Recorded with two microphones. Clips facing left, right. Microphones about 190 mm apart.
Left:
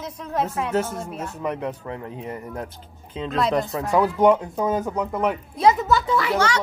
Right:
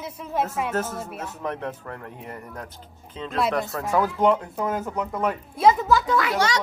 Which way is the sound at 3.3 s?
5° right (ahead or behind).